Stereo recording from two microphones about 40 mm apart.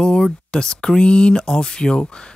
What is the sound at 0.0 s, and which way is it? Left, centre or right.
Speech, centre.